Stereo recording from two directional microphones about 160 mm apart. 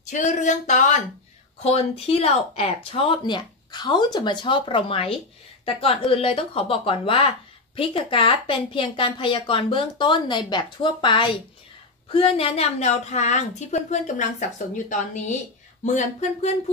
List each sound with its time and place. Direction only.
0.0 s a woman's voice: 50° left (ahead or behind)
1.6 s a woman's voice: 40° left (ahead or behind)